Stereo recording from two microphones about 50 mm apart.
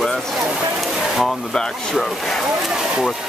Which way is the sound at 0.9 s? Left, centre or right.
Centre.